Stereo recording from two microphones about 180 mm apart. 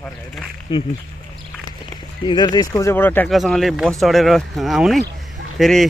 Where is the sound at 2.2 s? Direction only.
25° left (ahead or behind).